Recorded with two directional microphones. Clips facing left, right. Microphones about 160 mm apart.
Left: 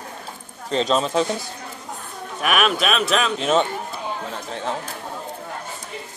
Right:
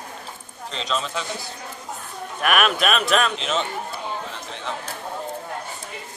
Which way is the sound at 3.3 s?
50° left (ahead or behind).